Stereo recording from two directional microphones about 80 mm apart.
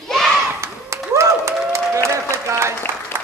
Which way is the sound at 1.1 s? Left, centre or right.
Right.